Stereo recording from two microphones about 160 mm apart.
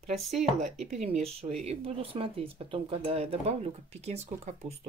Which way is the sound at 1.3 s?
40° right (ahead or behind).